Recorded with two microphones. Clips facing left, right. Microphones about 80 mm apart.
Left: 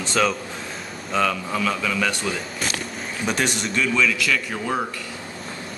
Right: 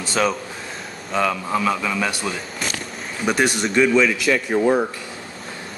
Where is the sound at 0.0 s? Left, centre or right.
Centre.